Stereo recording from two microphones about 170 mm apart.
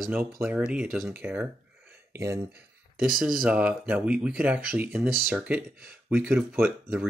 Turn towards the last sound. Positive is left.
turn(degrees=-10)  # may be behind; listen again after turning